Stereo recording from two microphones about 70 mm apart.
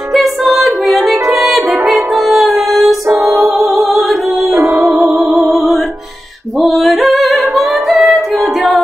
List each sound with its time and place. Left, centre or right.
0.1 s music: centre
1.1 s music: right
2.1 s music: centre
3.1 s music: right
3.3 s music: centre